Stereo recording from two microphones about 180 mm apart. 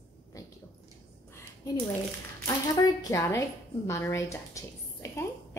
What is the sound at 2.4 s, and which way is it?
A woman's voice, 15° left (ahead or behind).